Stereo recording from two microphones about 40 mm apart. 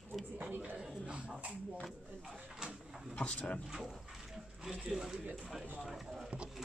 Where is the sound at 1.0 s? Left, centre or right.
Right.